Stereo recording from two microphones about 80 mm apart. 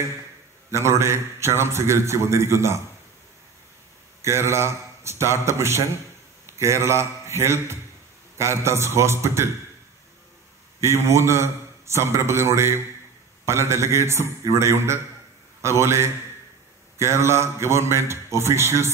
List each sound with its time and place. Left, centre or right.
0.7 s a man's voice: right
4.2 s a man's voice: right
10.8 s a man's voice: right